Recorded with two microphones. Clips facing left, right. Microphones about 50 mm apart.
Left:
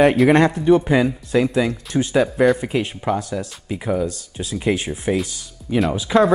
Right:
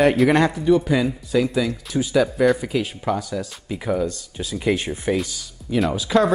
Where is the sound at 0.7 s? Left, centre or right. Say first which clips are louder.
Left 2 dB; left.